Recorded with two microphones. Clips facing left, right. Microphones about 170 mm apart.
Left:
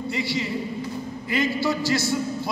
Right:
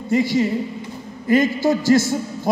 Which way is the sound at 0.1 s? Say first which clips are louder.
Right 11 dB; 45° right (ahead or behind).